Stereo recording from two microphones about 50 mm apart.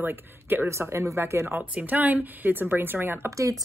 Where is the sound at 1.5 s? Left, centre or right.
Right.